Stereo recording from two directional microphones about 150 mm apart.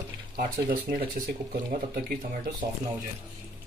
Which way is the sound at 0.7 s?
75° right (ahead or behind).